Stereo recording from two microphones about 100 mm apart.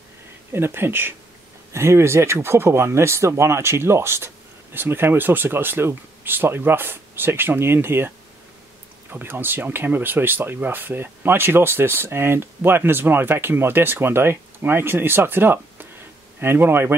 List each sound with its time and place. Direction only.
0.5 s speech: 25° right (ahead or behind)
9.1 s speech: 20° right (ahead or behind)